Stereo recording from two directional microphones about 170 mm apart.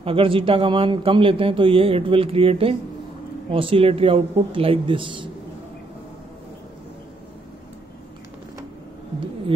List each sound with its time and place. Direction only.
0.0 s a man's voice: 30° right (ahead or behind)